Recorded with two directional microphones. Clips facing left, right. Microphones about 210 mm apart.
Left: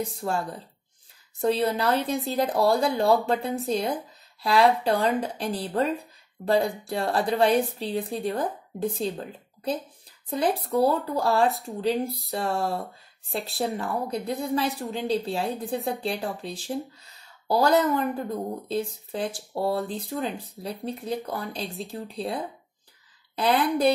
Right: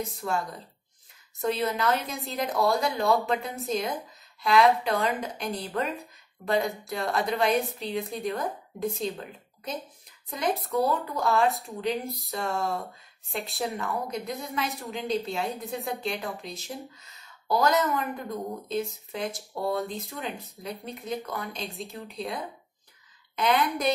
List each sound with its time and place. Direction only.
0.2 s speech: 30° left (ahead or behind)
11.4 s speech: centre (ahead or behind)
11.8 s speech: 30° left (ahead or behind)
21.6 s speech: centre (ahead or behind)
21.9 s speech: 30° left (ahead or behind)